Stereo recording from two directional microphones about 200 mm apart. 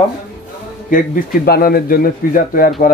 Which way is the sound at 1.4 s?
50° left (ahead or behind).